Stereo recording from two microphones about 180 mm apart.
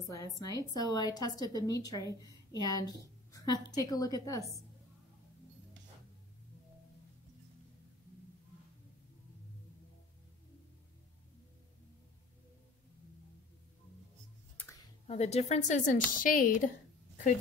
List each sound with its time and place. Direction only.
0.1 s a woman's voice: 20° left (ahead or behind)
15.0 s speech: 35° left (ahead or behind)